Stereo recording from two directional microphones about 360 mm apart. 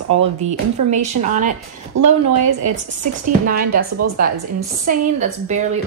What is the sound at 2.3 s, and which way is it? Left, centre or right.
Speech, right.